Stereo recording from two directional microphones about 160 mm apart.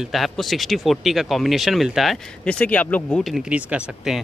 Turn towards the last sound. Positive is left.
turn(degrees=-5)  # may be behind; listen again after turning